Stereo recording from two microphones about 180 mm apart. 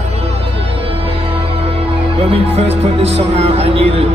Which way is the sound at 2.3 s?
35° right (ahead or behind).